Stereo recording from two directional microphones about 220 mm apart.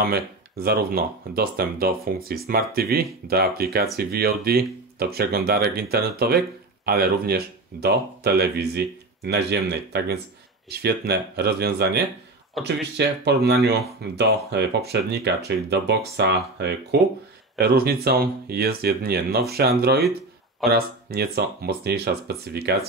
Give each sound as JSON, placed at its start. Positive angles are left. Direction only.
{"t": 0.0, "sound": "speech", "side_deg": -45}